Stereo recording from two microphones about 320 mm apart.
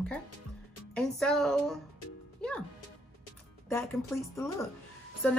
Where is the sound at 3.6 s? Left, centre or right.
Centre.